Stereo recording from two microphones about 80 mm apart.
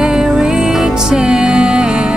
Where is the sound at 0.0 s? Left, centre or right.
Centre.